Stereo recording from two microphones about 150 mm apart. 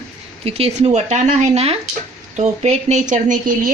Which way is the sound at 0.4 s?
45° right (ahead or behind).